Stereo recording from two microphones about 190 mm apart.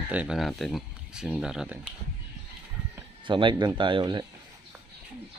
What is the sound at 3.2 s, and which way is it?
Speech, 25° right (ahead or behind).